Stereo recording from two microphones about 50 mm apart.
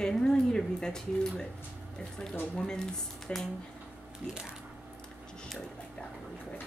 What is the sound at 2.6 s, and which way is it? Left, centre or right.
Speech, centre.